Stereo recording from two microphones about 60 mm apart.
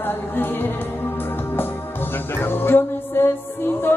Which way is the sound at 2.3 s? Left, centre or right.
Left.